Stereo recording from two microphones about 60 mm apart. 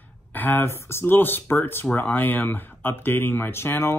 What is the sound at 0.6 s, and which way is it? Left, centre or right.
Speech, left.